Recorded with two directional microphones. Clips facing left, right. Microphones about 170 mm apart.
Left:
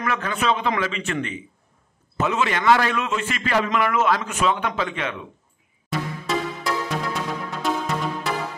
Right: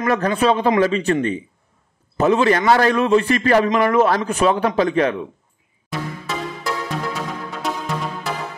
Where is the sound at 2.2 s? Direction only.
35° right (ahead or behind).